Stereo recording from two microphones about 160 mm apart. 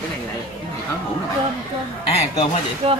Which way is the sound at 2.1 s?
40° left (ahead or behind).